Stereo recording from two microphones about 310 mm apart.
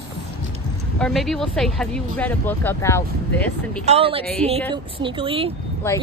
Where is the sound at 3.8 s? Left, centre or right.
Centre.